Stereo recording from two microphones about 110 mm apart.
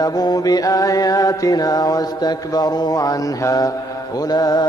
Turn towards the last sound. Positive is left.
turn(degrees=35)  # may be behind; listen again after turning